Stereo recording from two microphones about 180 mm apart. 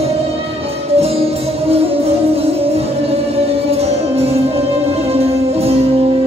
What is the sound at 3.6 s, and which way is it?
Music, 35° right (ahead or behind).